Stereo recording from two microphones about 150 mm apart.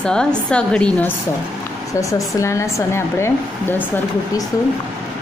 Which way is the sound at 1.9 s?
20° left (ahead or behind).